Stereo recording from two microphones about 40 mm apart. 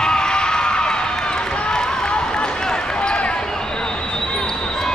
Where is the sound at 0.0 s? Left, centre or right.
Centre.